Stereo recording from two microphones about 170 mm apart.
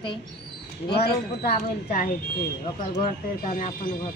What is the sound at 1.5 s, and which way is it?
A woman's voice, 55° left (ahead or behind).